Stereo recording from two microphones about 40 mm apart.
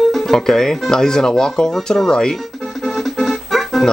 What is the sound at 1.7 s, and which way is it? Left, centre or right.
Speech, centre.